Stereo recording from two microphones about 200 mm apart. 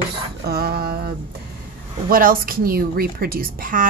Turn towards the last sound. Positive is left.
turn(degrees=-45)  # may be behind; listen again after turning